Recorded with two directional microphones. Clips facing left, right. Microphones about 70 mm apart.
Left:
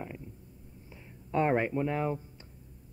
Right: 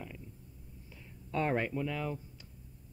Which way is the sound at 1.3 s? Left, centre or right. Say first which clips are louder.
Left 5 dB; left.